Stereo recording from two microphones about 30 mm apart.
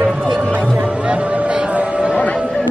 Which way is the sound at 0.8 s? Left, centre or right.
Right.